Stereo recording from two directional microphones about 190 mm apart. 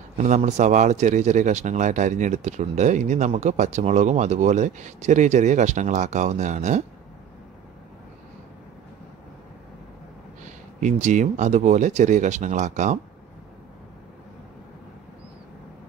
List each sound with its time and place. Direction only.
0.2 s speech: 35° right (ahead or behind)
10.4 s speech: 40° right (ahead or behind)